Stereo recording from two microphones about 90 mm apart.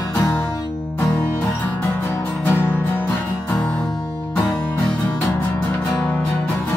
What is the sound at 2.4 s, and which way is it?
Music, 20° left (ahead or behind).